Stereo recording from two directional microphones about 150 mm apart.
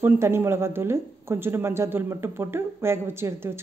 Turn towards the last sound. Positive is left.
turn(degrees=-15)  # may be behind; listen again after turning